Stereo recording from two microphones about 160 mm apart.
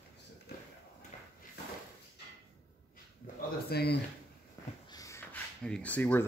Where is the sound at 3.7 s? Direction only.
90° left.